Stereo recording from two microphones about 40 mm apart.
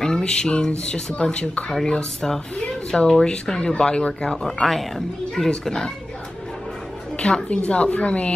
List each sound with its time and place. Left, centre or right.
0.0 s speech: left
4.6 s speech: centre
5.5 s speech: centre
7.2 s a woman's voice: left